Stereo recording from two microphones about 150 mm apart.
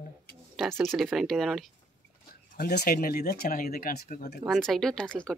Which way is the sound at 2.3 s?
90° left.